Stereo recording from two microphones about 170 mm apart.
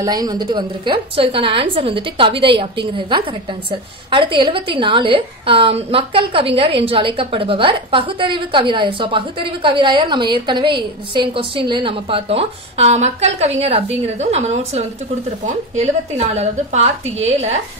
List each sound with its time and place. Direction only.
0.0 s a woman's voice: 25° right (ahead or behind)
3.7 s a woman's voice: 30° right (ahead or behind)